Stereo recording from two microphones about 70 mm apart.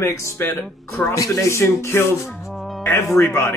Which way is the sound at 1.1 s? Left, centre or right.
Left.